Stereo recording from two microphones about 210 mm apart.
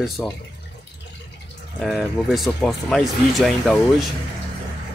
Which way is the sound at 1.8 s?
Centre (ahead or behind).